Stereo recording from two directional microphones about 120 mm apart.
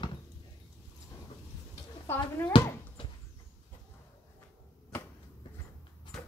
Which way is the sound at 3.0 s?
45° left (ahead or behind).